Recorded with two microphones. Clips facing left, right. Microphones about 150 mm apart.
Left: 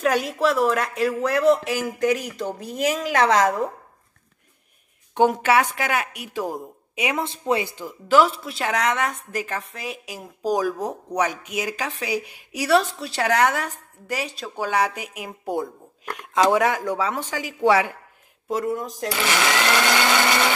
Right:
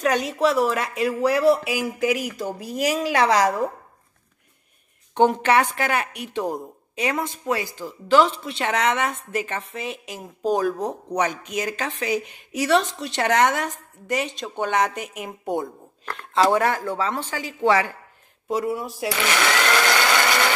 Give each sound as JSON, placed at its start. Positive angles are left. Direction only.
{"t": 0.0, "sound": "a woman's voice", "side_deg": 0}
{"t": 5.1, "sound": "a woman's voice", "side_deg": 5}
{"t": 7.1, "sound": "speech", "side_deg": 20}
{"t": 8.1, "sound": "a woman's voice", "side_deg": 5}
{"t": 16.1, "sound": "speech", "side_deg": 15}
{"t": 18.5, "sound": "a woman's voice", "side_deg": -5}
{"t": 19.1, "sound": "sewing machine", "side_deg": 5}